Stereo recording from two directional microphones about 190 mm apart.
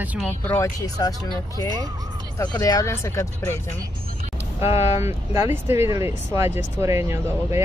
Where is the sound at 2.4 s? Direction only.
20° left (ahead or behind).